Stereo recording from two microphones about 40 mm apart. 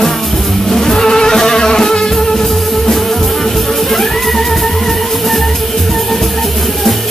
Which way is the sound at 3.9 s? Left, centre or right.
Centre.